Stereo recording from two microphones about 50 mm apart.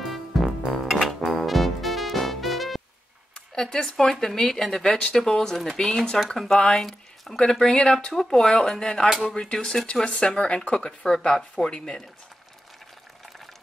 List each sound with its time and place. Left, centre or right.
0.0 s music: centre
3.3 s speech: centre
7.5 s speech: centre